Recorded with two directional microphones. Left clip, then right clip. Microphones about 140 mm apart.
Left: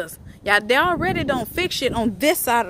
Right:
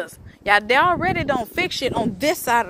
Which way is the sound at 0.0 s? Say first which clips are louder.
Right 1 dB; 55° left (ahead or behind).